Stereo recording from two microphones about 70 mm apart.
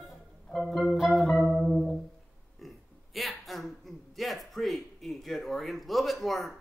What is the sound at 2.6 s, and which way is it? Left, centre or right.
Burping, centre.